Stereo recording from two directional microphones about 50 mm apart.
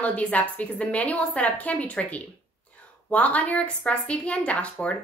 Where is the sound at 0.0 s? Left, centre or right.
Left.